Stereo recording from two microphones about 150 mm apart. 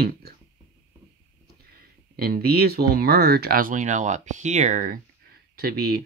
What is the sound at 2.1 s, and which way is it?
Speech, 85° right.